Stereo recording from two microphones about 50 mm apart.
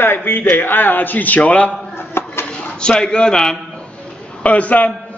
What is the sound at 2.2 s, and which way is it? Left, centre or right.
Dishes, left.